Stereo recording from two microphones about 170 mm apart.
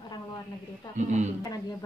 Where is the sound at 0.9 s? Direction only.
45° right (ahead or behind).